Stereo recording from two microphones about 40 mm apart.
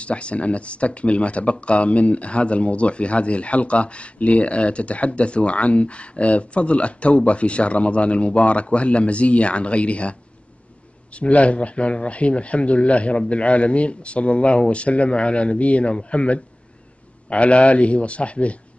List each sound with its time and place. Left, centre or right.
0.0 s speech: left